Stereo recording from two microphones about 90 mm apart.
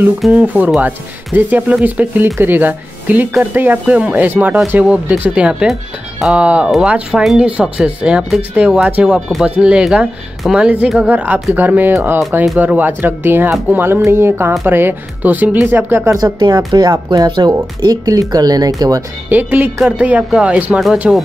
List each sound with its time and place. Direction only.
0.3 s speech: 15° right (ahead or behind)
16.3 s speech: 55° right (ahead or behind)
19.2 s speech: 20° right (ahead or behind)